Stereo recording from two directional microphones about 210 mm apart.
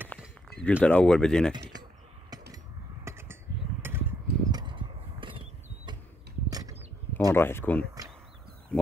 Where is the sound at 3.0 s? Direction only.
10° right (ahead or behind).